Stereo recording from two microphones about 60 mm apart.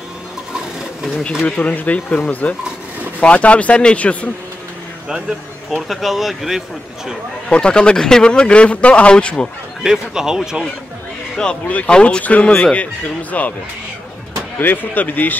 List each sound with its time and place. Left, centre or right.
1.4 s speech: left
5.8 s speech: centre
7.4 s a man's voice: centre
9.8 s speech: centre
11.6 s speech: left
14.6 s speech: left